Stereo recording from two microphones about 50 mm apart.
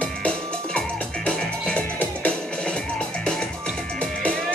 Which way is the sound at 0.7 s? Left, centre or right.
Centre.